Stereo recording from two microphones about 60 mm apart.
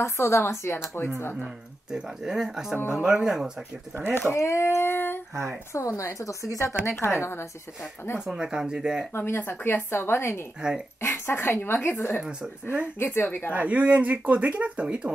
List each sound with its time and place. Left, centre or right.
0.0 s speech: left
1.0 s speech: left
1.9 s speech: centre
3.9 s speech: right
4.3 s speech: left
5.7 s speech: left
6.7 s speech: left
8.4 s speech: centre
9.1 s speech: left
10.6 s speech: centre
11.0 s speech: left
12.2 s speech: centre
12.8 s speech: left
13.6 s speech: right